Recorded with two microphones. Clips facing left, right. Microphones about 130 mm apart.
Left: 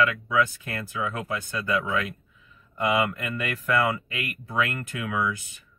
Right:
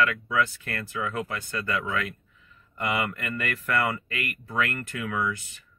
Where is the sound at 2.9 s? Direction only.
20° left (ahead or behind).